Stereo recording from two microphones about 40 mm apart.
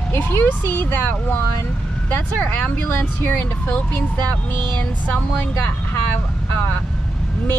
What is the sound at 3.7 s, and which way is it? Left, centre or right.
Speech, left.